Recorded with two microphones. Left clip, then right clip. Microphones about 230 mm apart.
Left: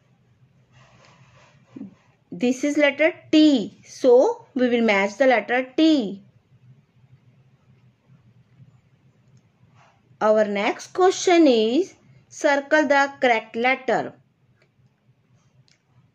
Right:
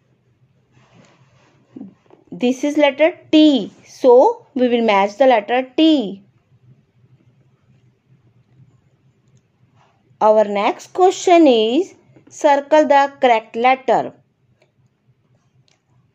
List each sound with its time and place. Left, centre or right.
2.2 s a woman's voice: centre
10.1 s a woman's voice: centre